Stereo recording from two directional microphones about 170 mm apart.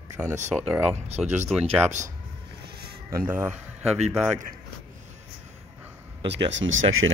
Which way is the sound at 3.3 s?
10° right (ahead or behind).